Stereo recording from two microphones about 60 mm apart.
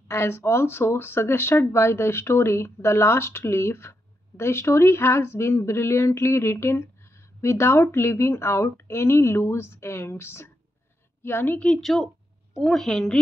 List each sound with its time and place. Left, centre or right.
0.1 s a woman's voice: left
11.5 s a woman's voice: centre
11.8 s a woman's voice: centre